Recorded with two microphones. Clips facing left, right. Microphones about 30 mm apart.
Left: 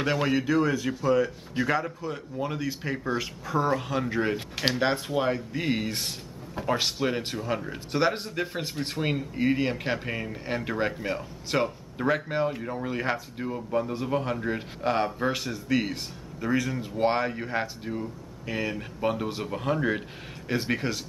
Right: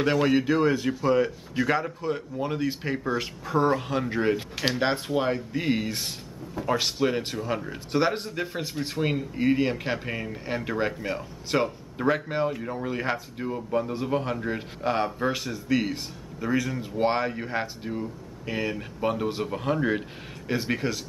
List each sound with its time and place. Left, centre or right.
0.0 s a man's voice: centre; by 1.3 s right
1.6 s a man's voice: centre
2.0 s speech: centre
2.3 s a man's voice: centre
3.7 s speech: centre